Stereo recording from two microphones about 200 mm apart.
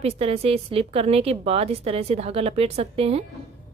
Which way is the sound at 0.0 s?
30° right (ahead or behind).